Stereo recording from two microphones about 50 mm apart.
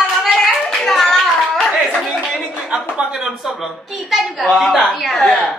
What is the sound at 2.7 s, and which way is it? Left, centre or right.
A man's voice, right.